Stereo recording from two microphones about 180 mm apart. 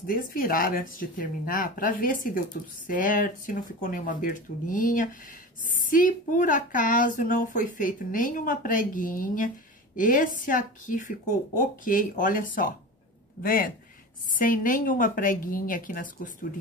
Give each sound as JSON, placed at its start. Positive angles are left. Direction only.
{"t": 0.0, "sound": "speech", "side_deg": 50}